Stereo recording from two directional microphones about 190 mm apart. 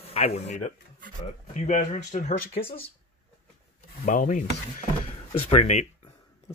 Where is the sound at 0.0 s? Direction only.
35° left (ahead or behind).